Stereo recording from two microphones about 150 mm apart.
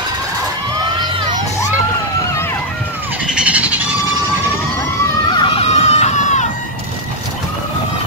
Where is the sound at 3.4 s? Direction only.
10° right (ahead or behind).